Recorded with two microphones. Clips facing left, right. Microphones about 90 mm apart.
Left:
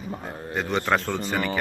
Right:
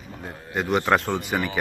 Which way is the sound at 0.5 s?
10° right (ahead or behind).